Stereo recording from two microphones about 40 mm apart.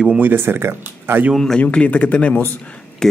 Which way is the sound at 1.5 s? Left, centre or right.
Left.